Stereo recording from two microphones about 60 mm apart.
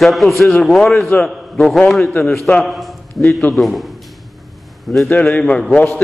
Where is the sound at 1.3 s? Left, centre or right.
Centre.